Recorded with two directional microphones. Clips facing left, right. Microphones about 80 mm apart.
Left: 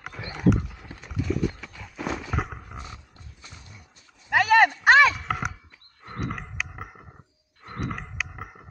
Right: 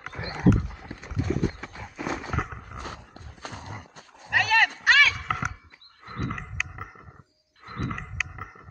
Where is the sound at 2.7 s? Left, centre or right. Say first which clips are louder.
Right 3 dB; right.